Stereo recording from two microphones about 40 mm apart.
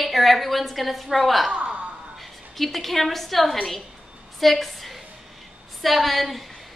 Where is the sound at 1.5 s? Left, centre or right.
Right.